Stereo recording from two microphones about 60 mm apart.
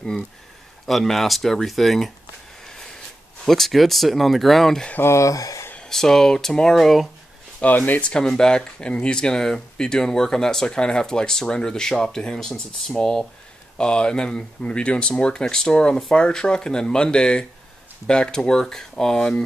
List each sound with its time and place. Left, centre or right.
0.8 s speech: centre
2.6 s a sound: centre
3.4 s speech: centre
5.0 s speech: left
5.8 s speech: centre
7.6 s speech: left
8.1 s speech: centre